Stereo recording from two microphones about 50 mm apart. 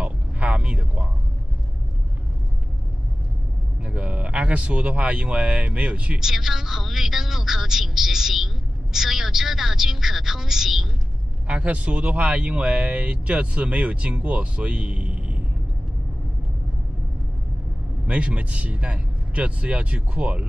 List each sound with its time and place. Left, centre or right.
0.0 s a sound: right
3.8 s speech: right
6.1 s speech: centre
11.4 s speech: right
18.0 s speech: right